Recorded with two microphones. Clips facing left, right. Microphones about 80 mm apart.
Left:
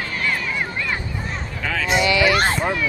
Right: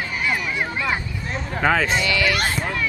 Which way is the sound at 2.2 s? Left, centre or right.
Left.